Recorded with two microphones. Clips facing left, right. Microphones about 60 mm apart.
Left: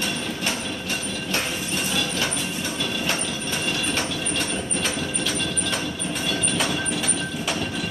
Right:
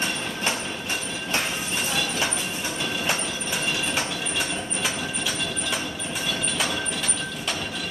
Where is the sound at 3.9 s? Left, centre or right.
Centre.